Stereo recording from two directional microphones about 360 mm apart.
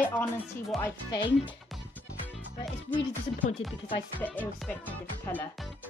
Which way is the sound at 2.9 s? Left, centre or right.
Centre.